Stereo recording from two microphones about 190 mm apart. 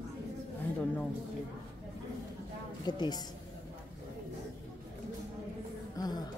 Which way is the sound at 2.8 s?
20° left (ahead or behind).